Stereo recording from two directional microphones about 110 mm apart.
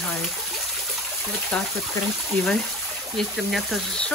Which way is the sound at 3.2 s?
Centre (ahead or behind).